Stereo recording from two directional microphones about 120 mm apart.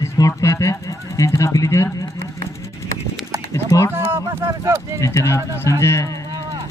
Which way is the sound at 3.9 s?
20° right (ahead or behind).